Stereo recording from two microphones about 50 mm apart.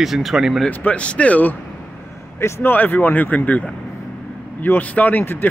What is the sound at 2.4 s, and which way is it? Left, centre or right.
Speech, left.